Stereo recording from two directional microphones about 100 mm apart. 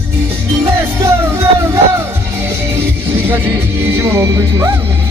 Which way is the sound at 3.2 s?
20° right (ahead or behind).